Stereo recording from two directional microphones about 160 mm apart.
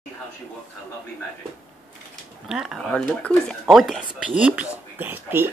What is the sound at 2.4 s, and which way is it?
Speech, 5° right (ahead or behind).